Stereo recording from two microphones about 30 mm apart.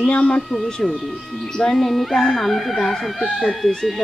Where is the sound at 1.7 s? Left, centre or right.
Centre.